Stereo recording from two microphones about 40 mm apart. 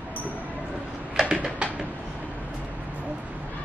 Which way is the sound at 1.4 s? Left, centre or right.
Right.